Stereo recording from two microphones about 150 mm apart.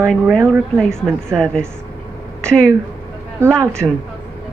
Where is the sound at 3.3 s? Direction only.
20° right (ahead or behind).